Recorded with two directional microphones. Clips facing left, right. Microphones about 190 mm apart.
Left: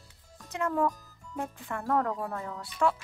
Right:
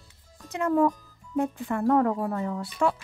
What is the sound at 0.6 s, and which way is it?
Speech, 20° right (ahead or behind).